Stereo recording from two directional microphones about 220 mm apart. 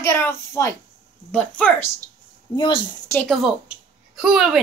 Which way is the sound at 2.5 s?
20° left (ahead or behind).